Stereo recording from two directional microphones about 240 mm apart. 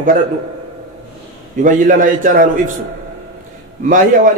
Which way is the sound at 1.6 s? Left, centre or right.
Right.